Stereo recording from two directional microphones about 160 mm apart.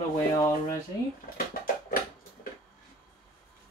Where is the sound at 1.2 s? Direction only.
60° left (ahead or behind).